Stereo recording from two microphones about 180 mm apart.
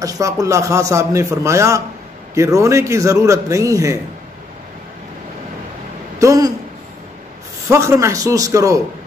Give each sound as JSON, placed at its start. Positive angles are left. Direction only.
{"t": 0.0, "sound": "a man's voice", "side_deg": -20}
{"t": 6.1, "sound": "a sound", "side_deg": -20}
{"t": 7.7, "sound": "a man's voice", "side_deg": -15}